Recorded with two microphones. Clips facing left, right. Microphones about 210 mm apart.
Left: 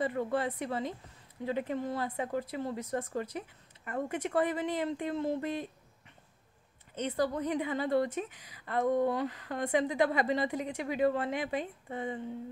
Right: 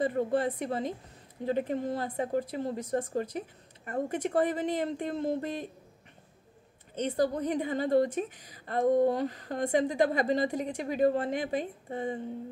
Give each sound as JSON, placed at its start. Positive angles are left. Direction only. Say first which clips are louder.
{"t": 0.0, "sound": "a woman's voice", "louder": "right 4 dB", "side_deg": -50}
{"t": 7.1, "sound": "a woman's voice", "louder": "right 3 dB", "side_deg": -45}